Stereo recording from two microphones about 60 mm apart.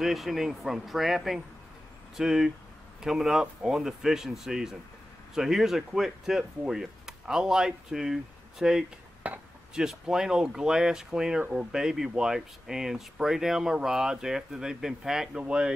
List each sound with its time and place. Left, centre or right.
0.0 s speech: centre
9.2 s speech: right
9.8 s speech: centre